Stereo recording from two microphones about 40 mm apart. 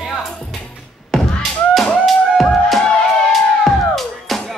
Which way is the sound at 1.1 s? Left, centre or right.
Centre.